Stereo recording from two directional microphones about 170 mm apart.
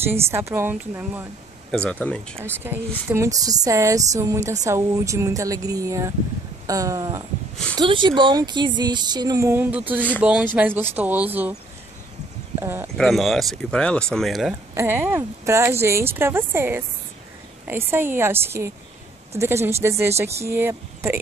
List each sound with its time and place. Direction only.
0.1 s speech: 15° right (ahead or behind)
1.9 s speech: 5° left (ahead or behind)
2.4 s speech: 10° right (ahead or behind)
7.7 s speech: 30° right (ahead or behind); by 11.5 s 10° right (ahead or behind)
12.5 s speech: 15° right (ahead or behind)
12.9 s speech: centre (ahead or behind)
14.7 s speech: 15° right (ahead or behind)